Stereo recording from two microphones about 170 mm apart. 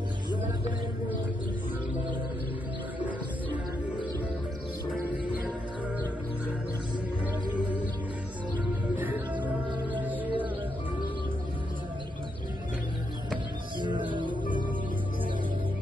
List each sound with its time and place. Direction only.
5.1 s music: 10° right (ahead or behind)
7.5 s music: 10° right (ahead or behind)
8.9 s music: 10° right (ahead or behind)
13.7 s music: 30° right (ahead or behind)